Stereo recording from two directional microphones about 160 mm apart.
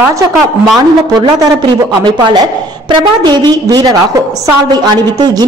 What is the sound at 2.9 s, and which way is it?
A woman's voice, 25° right (ahead or behind).